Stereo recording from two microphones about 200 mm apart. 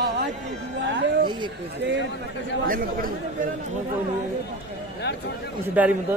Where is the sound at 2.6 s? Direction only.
45° right (ahead or behind).